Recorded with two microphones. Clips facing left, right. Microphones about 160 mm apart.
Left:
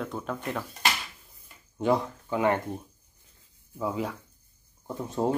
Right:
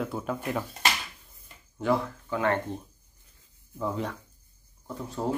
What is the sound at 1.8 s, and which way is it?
Speech, 20° left (ahead or behind).